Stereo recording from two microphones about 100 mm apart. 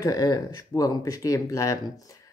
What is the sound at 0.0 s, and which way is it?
Speech, 35° left (ahead or behind).